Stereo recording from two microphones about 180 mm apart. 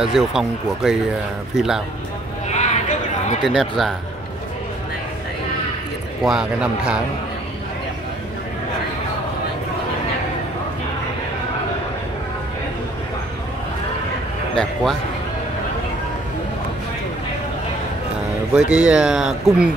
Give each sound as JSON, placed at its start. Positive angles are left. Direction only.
{"t": 0.0, "sound": "speech", "side_deg": 0}
{"t": 2.5, "sound": "a sound", "side_deg": 40}
{"t": 3.4, "sound": "speech", "side_deg": 0}
{"t": 6.2, "sound": "speech", "side_deg": -5}
{"t": 18.5, "sound": "speech", "side_deg": -5}